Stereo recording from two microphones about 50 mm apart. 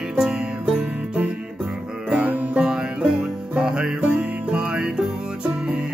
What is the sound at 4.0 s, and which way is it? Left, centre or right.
Music, right.